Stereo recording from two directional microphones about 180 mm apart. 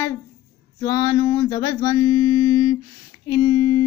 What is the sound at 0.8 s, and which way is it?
Mantra, 20° left (ahead or behind).